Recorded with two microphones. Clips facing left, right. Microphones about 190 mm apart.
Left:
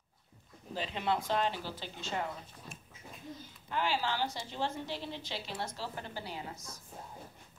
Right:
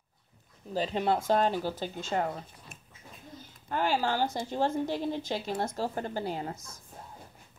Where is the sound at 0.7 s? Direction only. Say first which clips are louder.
Right 6 dB; 40° right (ahead or behind).